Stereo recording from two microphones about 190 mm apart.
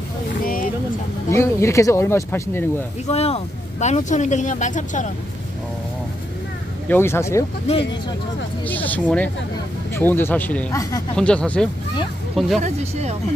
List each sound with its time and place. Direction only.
1.3 s speech: 15° left (ahead or behind)
3.1 s speech: 35° left (ahead or behind)
6.9 s speech: 15° left (ahead or behind)
8.6 s speech: 10° left (ahead or behind)
12.5 s speech: 35° right (ahead or behind)